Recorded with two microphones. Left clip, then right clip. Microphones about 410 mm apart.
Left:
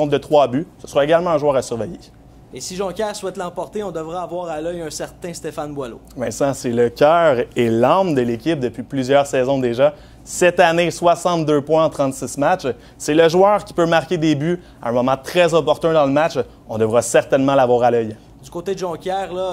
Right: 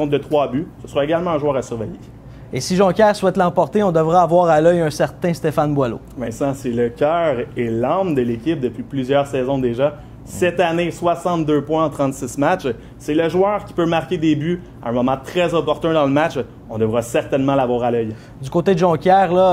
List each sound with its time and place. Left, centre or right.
0.0 s a man's voice: left
2.5 s speech: right
6.1 s a man's voice: left
13.0 s a man's voice: left
18.5 s speech: right